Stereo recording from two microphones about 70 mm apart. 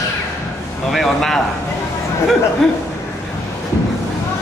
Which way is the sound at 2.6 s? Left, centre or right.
Centre.